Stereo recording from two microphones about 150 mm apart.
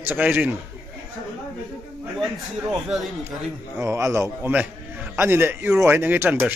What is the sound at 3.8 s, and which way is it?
A man's voice, 20° right (ahead or behind).